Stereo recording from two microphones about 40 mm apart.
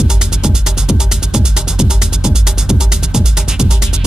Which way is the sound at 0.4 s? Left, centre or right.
Centre.